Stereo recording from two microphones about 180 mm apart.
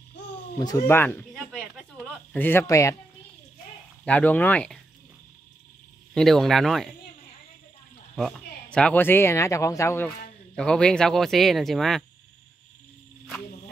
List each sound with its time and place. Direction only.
0.6 s speech: 20° left (ahead or behind)
1.3 s a sound: centre (ahead or behind)
2.3 s speech: 10° left (ahead or behind)
4.0 s speech: 10° left (ahead or behind)
6.1 s speech: centre (ahead or behind)
8.2 s speech: 5° left (ahead or behind)